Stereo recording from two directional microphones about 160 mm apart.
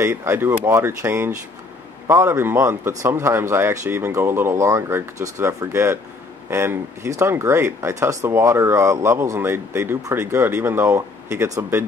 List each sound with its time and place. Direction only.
0.0 s speech: 15° right (ahead or behind)